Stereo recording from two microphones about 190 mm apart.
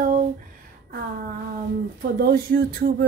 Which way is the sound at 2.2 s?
50° right (ahead or behind).